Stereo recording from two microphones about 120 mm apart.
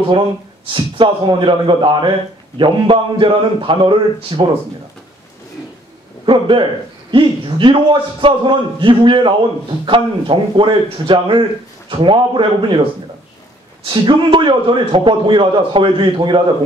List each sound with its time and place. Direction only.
0.7 s a man's voice: 45° right (ahead or behind)
6.2 s a man's voice: 45° right (ahead or behind)
13.8 s a man's voice: 40° right (ahead or behind)